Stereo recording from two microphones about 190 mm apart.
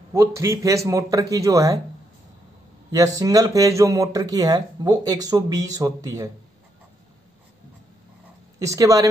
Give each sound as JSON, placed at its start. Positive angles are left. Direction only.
{"t": 0.1, "sound": "a man's voice", "side_deg": -15}
{"t": 2.9, "sound": "speech", "side_deg": -20}
{"t": 8.5, "sound": "a man's voice", "side_deg": -15}